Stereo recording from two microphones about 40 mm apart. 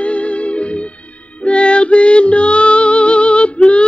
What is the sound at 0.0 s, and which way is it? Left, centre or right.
Music, left.